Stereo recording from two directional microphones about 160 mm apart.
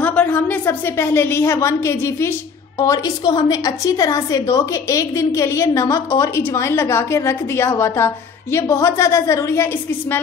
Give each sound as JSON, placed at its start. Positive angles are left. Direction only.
{"t": 0.0, "sound": "a woman's voice", "side_deg": 10}